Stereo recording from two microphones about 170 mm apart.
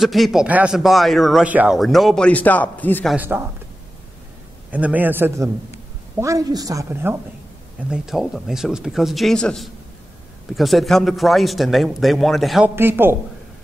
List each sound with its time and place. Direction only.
0.0 s speech: centre (ahead or behind)
3.2 s a man's voice: 15° right (ahead or behind)
4.6 s a man's voice: 10° right (ahead or behind)
7.9 s speech: centre (ahead or behind)
12.7 s a man's voice: 10° right (ahead or behind)